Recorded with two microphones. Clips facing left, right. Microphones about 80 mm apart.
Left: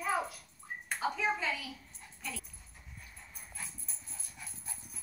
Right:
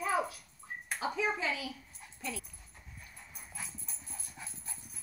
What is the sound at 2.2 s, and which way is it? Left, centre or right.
Dog, centre.